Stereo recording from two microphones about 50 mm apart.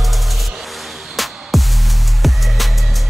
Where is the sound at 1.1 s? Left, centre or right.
Centre.